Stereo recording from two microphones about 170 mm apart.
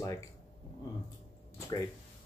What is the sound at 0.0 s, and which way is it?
Speech, 20° left (ahead or behind).